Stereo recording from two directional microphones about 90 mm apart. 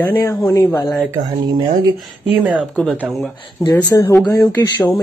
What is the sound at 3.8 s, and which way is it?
Speech, 40° left (ahead or behind).